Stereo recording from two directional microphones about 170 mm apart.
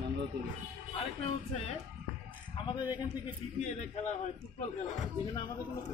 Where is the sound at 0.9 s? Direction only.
35° left (ahead or behind).